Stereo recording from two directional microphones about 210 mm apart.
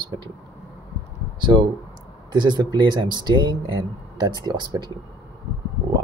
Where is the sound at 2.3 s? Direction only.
20° right (ahead or behind).